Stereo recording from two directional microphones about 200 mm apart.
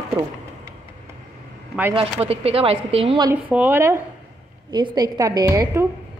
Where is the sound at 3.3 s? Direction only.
10° right (ahead or behind).